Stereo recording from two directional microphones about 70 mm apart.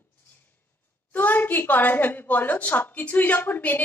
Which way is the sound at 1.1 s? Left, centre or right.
Left.